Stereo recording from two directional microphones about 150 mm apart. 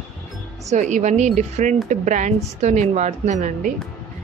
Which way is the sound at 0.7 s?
55° right (ahead or behind).